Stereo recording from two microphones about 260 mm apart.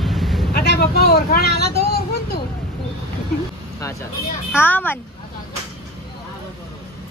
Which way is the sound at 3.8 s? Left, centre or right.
Centre.